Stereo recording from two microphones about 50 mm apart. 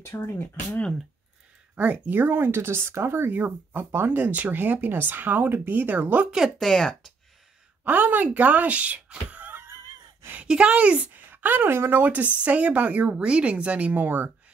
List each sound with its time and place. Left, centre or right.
0.2 s speech: left
1.8 s speech: right
2.1 s speech: right
3.3 s speech: right
3.9 s speech: right
4.2 s speech: right
6.6 s speech: centre
7.8 s speech: right
9.5 s a sound: right
10.4 s speech: right